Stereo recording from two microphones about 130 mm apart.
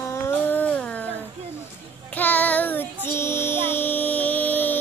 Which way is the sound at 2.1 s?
15° left (ahead or behind).